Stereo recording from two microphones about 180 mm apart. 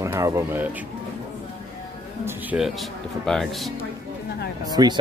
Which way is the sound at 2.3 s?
5° right (ahead or behind).